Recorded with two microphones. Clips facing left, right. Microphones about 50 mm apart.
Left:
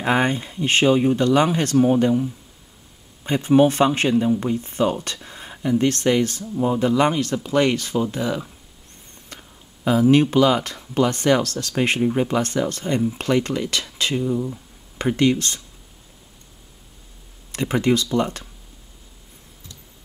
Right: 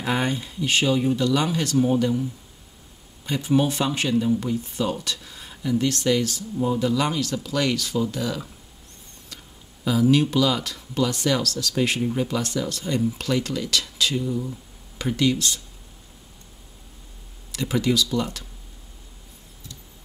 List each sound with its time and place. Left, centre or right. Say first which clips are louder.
0.0 s speech: left 5 dB; left
3.3 s speech: left 6 dB; left
9.3 s a sound: left 3 dB; left
9.8 s speech: left 4 dB; left
17.5 s speech: left 3 dB; left